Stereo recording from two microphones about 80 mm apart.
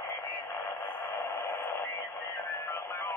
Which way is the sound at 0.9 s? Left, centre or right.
Left.